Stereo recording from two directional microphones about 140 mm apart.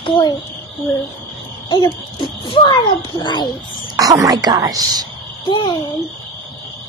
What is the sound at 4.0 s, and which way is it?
A woman's voice, 25° right (ahead or behind).